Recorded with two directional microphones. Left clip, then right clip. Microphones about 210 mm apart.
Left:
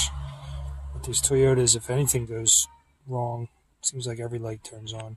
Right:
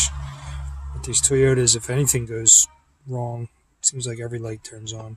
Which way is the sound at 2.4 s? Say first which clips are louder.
Right 7 dB; 45° right (ahead or behind).